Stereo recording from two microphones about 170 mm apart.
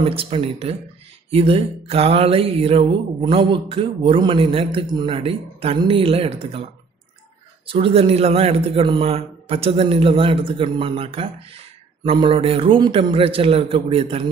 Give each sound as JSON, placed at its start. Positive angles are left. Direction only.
{"t": 0.0, "sound": "speech", "side_deg": -35}
{"t": 7.6, "sound": "speech", "side_deg": -35}